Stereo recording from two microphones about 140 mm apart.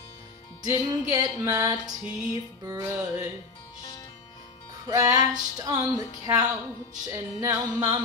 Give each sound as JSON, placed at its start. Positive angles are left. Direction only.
{"t": 0.6, "sound": "music", "side_deg": -25}
{"t": 4.8, "sound": "music", "side_deg": -25}